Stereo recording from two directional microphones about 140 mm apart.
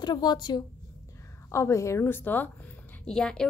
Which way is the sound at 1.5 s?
20° left (ahead or behind).